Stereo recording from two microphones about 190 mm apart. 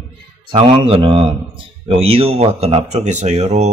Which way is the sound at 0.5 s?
25° right (ahead or behind).